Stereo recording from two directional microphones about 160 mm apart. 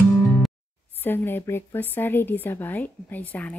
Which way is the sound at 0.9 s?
15° left (ahead or behind).